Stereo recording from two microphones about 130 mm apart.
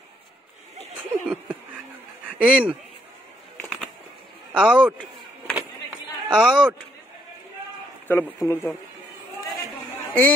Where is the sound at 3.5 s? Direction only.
5° left (ahead or behind).